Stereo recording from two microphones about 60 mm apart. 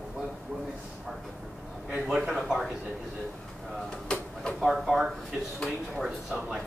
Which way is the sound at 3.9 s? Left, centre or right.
Centre.